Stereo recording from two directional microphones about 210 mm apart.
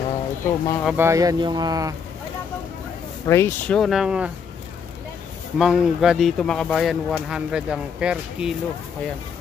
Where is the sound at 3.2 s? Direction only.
10° left (ahead or behind); by 4.3 s 5° right (ahead or behind).